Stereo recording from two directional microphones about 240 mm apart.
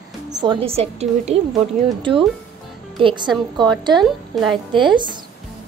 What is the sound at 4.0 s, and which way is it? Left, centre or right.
Speech, centre.